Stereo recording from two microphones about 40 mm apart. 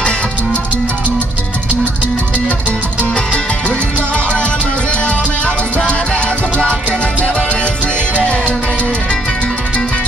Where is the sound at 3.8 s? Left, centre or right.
Right.